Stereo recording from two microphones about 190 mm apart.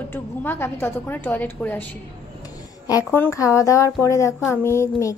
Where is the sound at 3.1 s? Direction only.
15° left (ahead or behind).